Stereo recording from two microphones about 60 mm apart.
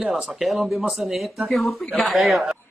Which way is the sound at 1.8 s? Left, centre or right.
Left.